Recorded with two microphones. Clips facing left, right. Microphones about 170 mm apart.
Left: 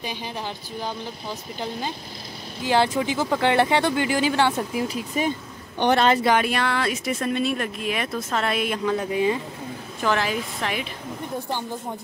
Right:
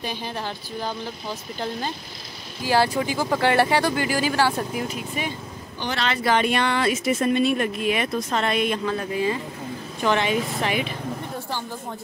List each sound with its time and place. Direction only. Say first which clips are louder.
0.0 s speech: right 2 dB; 15° left (ahead or behind)
1.6 s speech: right 1 dB; 15° left (ahead or behind)
5.8 s speech: left 8 dB; 55° left (ahead or behind)
6.2 s speech: even; 5° left (ahead or behind)
10.0 s speech: right 2 dB; centre (ahead or behind)